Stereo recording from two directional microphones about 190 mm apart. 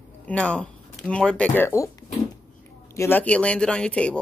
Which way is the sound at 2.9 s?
10° left (ahead or behind).